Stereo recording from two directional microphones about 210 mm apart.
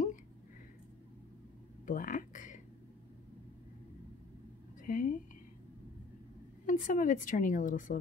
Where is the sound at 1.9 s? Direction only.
40° left (ahead or behind).